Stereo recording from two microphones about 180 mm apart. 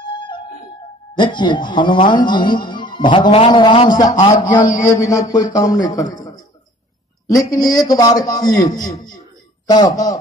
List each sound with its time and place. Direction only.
0.1 s music: 25° left (ahead or behind)
1.1 s speech: 25° left (ahead or behind)
4.4 s a man's voice: 45° left (ahead or behind)
4.7 s a man's voice: 20° left (ahead or behind)